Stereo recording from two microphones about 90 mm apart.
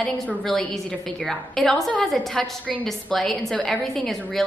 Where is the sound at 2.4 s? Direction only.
15° left (ahead or behind).